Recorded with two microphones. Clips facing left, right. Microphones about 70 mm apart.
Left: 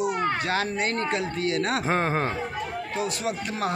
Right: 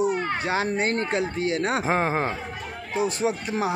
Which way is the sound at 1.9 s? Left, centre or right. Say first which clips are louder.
Right 1 dB; centre.